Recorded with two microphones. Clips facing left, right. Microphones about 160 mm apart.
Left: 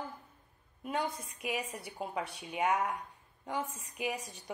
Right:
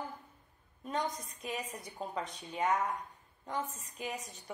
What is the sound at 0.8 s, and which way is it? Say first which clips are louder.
A woman's voice: left 1 dB; 10° left (ahead or behind).